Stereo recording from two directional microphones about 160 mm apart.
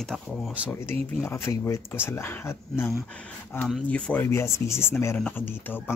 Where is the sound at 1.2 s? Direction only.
15° left (ahead or behind).